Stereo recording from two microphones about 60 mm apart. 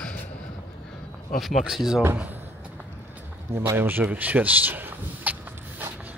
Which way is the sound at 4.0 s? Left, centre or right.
Right.